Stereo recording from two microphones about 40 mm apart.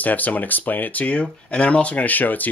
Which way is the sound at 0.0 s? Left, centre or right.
Left.